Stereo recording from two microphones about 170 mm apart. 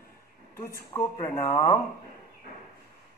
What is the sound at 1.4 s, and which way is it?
Speech, 15° left (ahead or behind).